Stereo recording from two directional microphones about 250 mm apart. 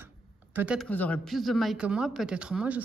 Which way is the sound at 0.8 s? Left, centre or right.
Centre.